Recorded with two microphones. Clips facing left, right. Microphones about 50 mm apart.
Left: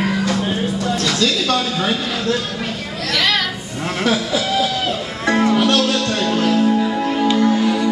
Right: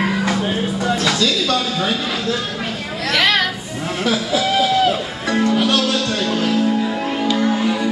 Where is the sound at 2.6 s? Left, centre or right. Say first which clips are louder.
Right 1 dB; centre.